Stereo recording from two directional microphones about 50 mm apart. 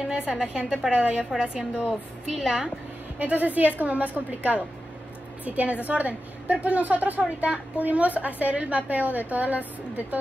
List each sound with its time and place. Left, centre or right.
0.3 s a woman's voice: centre
2.3 s a woman's voice: centre
3.2 s a woman's voice: right